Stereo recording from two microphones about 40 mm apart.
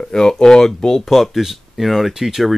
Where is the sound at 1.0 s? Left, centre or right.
Centre.